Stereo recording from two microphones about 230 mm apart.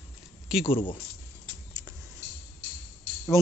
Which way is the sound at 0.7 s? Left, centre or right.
Left.